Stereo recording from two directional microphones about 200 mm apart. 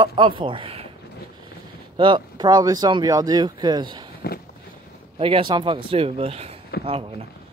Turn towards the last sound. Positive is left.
turn(degrees=-30)  # may be behind; listen again after turning